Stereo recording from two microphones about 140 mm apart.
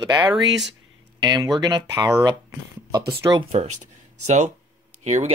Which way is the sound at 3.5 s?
50° right (ahead or behind).